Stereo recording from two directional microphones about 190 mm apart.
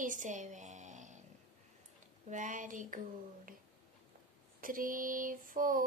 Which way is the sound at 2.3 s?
40° right (ahead or behind).